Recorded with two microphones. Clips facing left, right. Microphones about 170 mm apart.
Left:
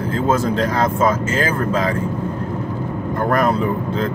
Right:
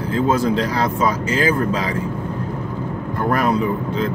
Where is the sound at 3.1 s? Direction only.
45° left (ahead or behind).